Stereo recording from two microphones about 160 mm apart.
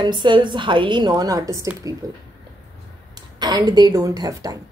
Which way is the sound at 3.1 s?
25° right (ahead or behind).